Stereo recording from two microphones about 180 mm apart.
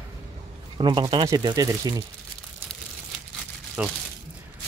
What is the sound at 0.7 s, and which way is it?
Speech, 25° right (ahead or behind).